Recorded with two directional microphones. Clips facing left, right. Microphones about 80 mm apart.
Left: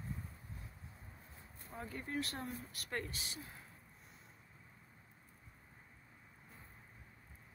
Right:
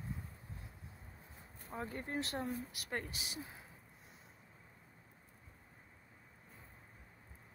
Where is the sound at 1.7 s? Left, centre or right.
Right.